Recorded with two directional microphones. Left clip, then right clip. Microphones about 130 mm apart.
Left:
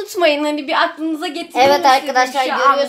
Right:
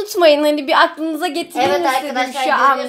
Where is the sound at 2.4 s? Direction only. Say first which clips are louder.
Right 5 dB; 55° right (ahead or behind).